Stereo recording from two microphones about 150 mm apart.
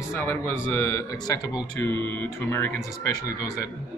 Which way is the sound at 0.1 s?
15° left (ahead or behind).